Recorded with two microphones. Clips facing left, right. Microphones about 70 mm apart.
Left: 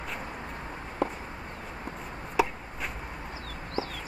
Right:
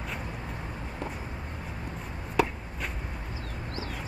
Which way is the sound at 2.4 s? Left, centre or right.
Centre.